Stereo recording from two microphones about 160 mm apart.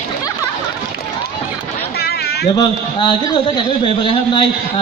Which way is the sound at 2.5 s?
30° left (ahead or behind).